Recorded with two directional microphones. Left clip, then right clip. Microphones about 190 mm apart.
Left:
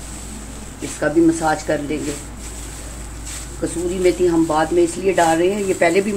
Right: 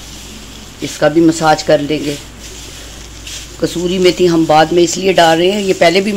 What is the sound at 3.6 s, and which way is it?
Speech, 60° right (ahead or behind).